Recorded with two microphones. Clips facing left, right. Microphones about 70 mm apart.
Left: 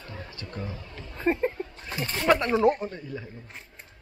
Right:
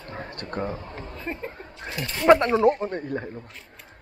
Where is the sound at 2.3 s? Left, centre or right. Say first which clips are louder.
Right 7 dB; centre.